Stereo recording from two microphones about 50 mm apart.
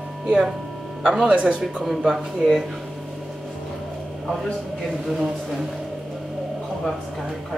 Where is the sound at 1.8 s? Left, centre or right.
Centre.